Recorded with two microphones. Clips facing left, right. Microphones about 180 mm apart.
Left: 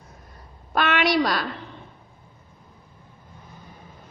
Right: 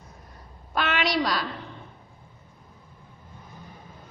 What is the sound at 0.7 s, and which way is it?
Speech, 55° left (ahead or behind).